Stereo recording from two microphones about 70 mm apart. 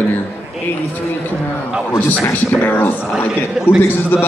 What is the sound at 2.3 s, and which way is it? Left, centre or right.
Speech, left.